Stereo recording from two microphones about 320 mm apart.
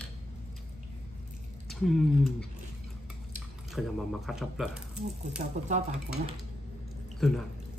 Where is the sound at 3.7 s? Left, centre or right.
Centre.